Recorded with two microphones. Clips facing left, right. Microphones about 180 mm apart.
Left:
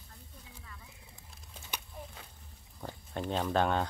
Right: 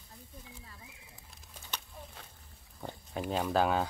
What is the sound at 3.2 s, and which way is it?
Speech, 5° right (ahead or behind).